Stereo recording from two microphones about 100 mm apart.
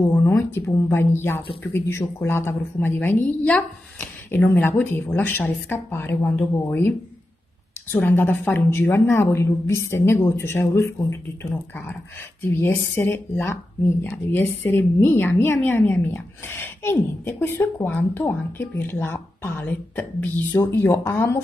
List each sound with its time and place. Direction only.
0.6 s a woman's voice: 25° left (ahead or behind)
7.9 s a woman's voice: 20° left (ahead or behind)
20.5 s a woman's voice: 30° left (ahead or behind)